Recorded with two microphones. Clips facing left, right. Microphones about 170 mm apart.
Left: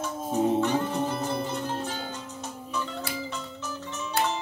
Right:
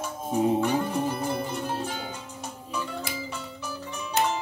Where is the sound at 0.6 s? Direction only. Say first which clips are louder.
Right 1 dB; 10° right (ahead or behind).